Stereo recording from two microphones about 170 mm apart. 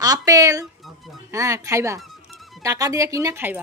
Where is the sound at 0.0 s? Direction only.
20° right (ahead or behind).